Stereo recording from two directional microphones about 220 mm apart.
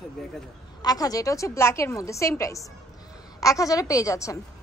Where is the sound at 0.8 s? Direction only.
15° left (ahead or behind).